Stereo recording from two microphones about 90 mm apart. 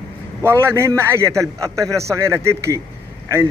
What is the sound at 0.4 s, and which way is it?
A man's voice, 30° right (ahead or behind).